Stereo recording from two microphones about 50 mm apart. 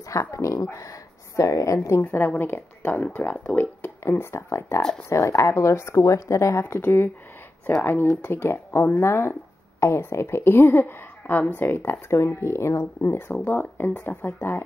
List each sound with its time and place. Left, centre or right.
0.1 s a woman's voice: left
2.0 s speech: left
3.2 s speech: left
3.5 s speech: left
4.5 s speech: left
5.1 s a woman's voice: left
6.6 s speech: left
13.5 s speech: left